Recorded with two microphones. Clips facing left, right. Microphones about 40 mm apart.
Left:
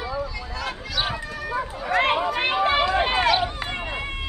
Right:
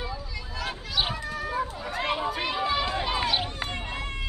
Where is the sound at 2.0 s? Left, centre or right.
Left.